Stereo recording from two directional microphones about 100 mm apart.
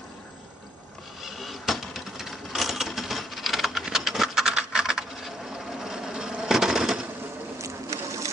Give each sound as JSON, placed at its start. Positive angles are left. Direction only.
{"t": 1.2, "sound": "typewriter", "side_deg": 0}
{"t": 7.5, "sound": "boat", "side_deg": -30}